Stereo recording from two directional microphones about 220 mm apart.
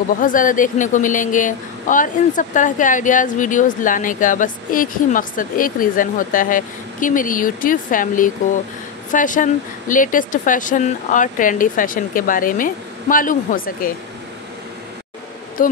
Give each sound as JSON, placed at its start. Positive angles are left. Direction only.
{"t": 0.2, "sound": "a woman's voice", "side_deg": 35}
{"t": 15.6, "sound": "a woman's voice", "side_deg": 40}